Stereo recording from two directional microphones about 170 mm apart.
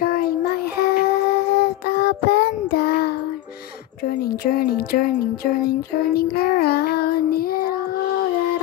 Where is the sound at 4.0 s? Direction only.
60° left (ahead or behind).